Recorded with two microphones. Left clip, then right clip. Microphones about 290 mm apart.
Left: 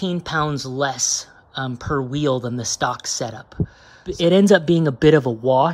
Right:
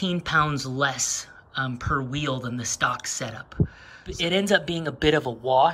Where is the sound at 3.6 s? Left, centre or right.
Centre.